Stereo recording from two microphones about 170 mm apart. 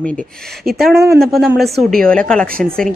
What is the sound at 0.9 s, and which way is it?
Speech, 15° right (ahead or behind).